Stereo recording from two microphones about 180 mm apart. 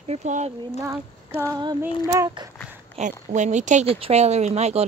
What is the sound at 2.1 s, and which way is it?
Speech, 20° right (ahead or behind).